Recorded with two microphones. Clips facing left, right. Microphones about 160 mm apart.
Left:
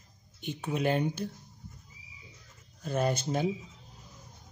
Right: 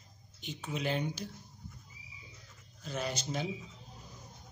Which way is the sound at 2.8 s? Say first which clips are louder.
Left 8 dB; 50° left (ahead or behind).